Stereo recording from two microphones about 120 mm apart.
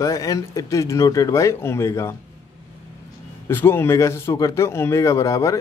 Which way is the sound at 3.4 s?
20° left (ahead or behind).